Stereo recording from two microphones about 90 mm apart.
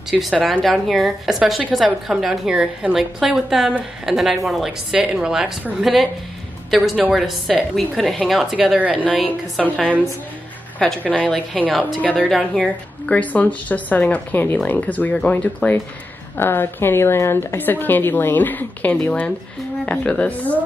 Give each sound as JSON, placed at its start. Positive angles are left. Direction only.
{"t": 0.2, "sound": "a woman's voice", "side_deg": 0}
{"t": 8.5, "sound": "a woman's voice", "side_deg": -15}
{"t": 9.6, "sound": "a woman's voice", "side_deg": 5}
{"t": 10.8, "sound": "speech", "side_deg": 5}
{"t": 12.3, "sound": "a woman's voice", "side_deg": 0}
{"t": 13.0, "sound": "a woman's voice", "side_deg": 15}